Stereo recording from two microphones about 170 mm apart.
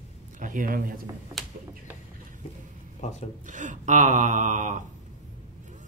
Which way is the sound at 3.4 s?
50° right (ahead or behind).